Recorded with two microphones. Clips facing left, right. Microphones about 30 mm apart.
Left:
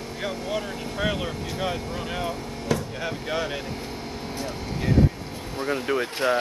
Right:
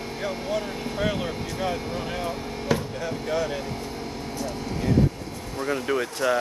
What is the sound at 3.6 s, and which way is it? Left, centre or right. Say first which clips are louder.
Vehicle: right 1 dB; centre.